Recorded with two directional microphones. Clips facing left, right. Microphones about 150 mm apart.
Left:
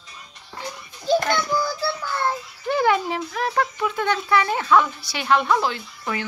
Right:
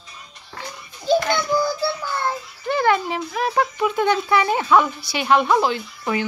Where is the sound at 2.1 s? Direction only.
Centre (ahead or behind).